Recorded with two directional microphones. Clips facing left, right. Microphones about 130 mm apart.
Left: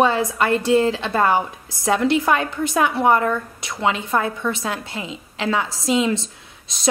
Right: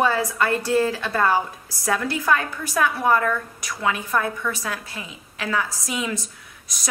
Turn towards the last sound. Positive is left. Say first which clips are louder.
# left 1 dB
turn(degrees=25)  # may be behind; listen again after turning